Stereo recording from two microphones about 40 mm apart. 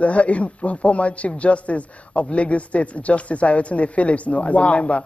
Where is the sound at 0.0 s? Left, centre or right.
Left.